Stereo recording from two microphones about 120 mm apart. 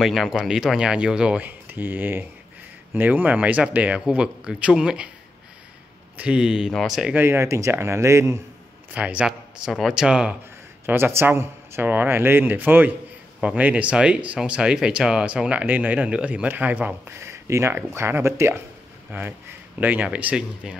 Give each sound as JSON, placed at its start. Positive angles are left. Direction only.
{"t": 0.0, "sound": "speech", "side_deg": 0}
{"t": 6.1, "sound": "speech", "side_deg": -10}
{"t": 7.2, "sound": "a man's voice", "side_deg": -20}
{"t": 8.9, "sound": "speech", "side_deg": -10}
{"t": 10.9, "sound": "a man's voice", "side_deg": -20}